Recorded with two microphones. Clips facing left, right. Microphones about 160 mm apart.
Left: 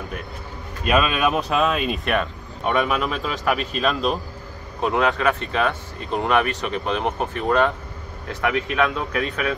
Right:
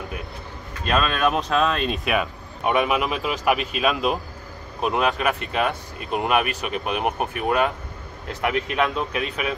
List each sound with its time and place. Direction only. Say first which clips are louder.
0.8 s speech: left 2 dB; 5° left (ahead or behind)
2.6 s speech: even; 15° right (ahead or behind)